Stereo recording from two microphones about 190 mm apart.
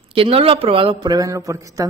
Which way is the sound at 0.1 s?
30° right (ahead or behind).